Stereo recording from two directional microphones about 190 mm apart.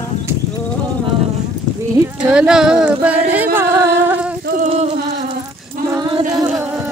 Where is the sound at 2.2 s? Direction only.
5° right (ahead or behind).